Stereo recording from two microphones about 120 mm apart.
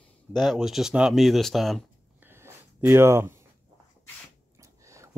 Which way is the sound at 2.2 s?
20° right (ahead or behind).